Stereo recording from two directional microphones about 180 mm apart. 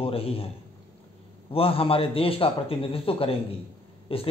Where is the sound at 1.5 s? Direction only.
30° left (ahead or behind).